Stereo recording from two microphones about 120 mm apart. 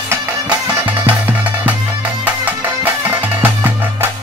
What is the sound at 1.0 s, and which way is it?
Music, 15° right (ahead or behind).